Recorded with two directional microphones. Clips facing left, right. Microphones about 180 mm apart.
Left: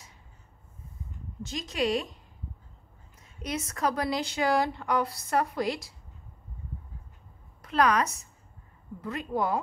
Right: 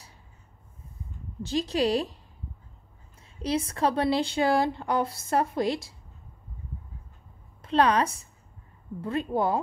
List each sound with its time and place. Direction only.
1.4 s speech: 30° right (ahead or behind)
3.4 s a woman's voice: 30° right (ahead or behind)
7.6 s a woman's voice: 30° right (ahead or behind)